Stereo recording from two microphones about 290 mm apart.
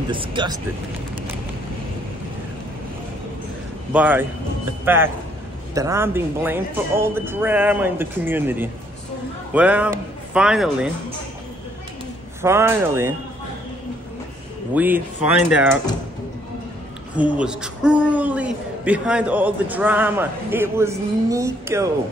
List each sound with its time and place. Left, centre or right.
0.1 s speech: centre
3.9 s a man's voice: centre
12.4 s speech: centre
14.7 s a man's voice: centre
17.2 s a man's voice: centre